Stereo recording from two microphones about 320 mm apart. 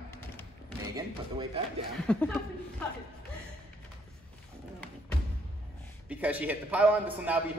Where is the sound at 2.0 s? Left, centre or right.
Centre.